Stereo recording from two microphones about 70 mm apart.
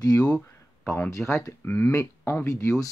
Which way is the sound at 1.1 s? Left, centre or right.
Left.